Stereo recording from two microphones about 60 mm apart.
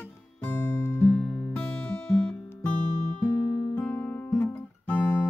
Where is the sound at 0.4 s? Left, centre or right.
Left.